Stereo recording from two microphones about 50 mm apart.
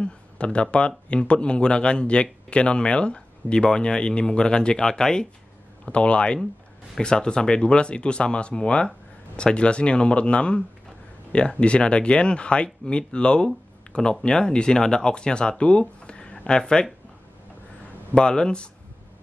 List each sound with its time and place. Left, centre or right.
0.0 s speech: left
11.6 s speech: left
18.1 s speech: centre